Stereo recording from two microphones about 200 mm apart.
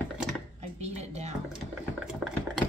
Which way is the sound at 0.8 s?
35° right (ahead or behind).